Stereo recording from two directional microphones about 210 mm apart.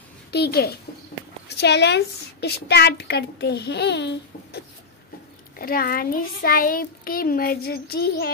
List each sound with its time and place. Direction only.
0.3 s a child's voice: 50° left (ahead or behind)
5.6 s a child's voice: 45° left (ahead or behind)